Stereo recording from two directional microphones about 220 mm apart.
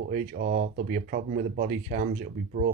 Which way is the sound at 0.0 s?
40° right (ahead or behind).